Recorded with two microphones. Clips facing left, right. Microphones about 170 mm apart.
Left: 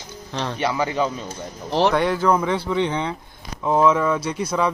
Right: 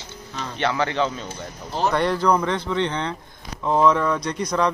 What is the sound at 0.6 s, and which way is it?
Speech, 10° left (ahead or behind).